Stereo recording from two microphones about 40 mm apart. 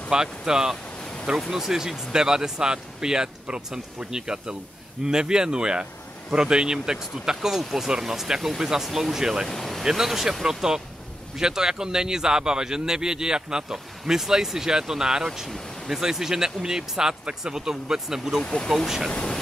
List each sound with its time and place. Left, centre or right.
0.1 s speech: centre
9.5 s vehicle: centre
9.8 s speech: centre
18.4 s speech: left